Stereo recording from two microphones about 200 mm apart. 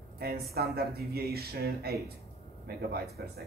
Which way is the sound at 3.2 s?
55° right (ahead or behind).